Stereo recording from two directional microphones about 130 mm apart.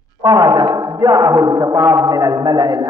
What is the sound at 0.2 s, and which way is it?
A man's voice, 30° right (ahead or behind).